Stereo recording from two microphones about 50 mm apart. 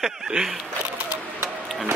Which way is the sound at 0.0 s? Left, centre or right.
Centre.